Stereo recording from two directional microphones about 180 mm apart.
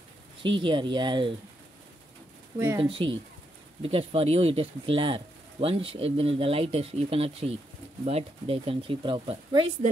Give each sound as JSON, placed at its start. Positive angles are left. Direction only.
{"t": 0.4, "sound": "speech", "side_deg": -25}
{"t": 2.8, "sound": "speech", "side_deg": -30}